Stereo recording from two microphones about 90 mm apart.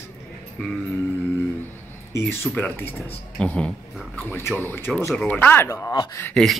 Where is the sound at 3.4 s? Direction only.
10° left (ahead or behind).